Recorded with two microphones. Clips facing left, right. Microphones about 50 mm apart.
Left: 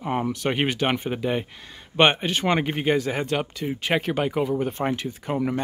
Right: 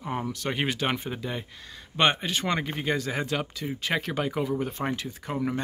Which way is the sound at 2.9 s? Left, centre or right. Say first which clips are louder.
Left 5 dB; centre.